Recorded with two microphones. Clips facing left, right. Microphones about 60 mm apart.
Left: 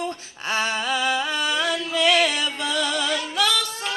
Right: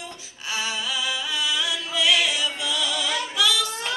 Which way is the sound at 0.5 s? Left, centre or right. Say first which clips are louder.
Left 5 dB; left.